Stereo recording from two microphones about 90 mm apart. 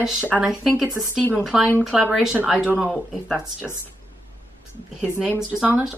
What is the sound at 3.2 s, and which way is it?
Speech, 5° right (ahead or behind).